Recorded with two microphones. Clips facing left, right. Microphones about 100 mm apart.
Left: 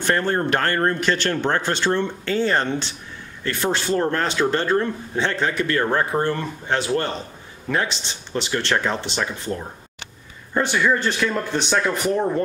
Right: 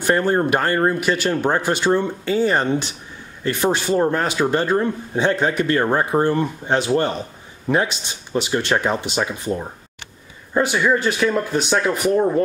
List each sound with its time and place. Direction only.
0.0 s speech: 15° right (ahead or behind)